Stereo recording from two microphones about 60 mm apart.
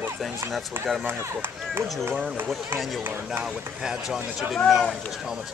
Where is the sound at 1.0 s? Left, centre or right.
Right.